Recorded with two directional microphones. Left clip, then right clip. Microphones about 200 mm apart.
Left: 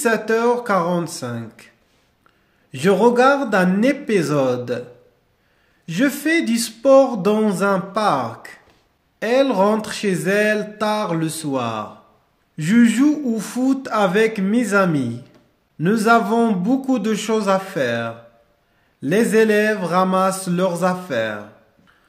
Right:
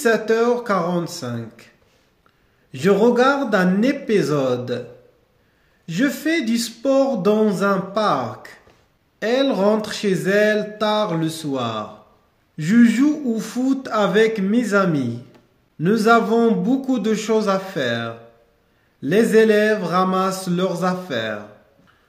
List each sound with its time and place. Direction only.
0.0 s speech: 25° left (ahead or behind)
2.7 s speech: 25° left (ahead or behind)
5.9 s speech: 25° left (ahead or behind)